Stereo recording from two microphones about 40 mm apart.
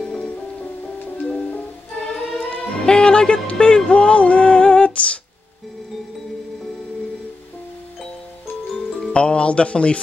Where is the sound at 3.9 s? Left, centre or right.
Left.